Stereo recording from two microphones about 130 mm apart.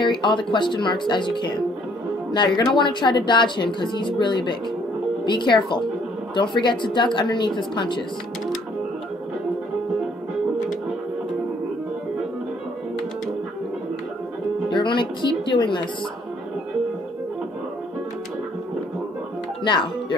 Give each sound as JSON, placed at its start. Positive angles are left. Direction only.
{"t": 0.0, "sound": "speech", "side_deg": 35}
{"t": 14.7, "sound": "music", "side_deg": 40}
{"t": 19.6, "sound": "speech", "side_deg": 40}